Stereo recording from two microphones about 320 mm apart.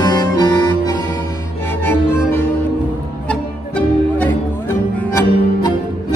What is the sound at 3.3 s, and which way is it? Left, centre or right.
Music, centre.